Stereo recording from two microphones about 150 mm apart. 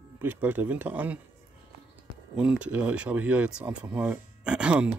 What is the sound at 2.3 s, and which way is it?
Speech, 5° right (ahead or behind).